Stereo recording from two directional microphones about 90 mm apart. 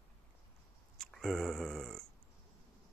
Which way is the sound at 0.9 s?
5° left (ahead or behind).